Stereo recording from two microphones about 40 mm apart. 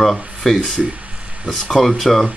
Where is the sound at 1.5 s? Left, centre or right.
Centre.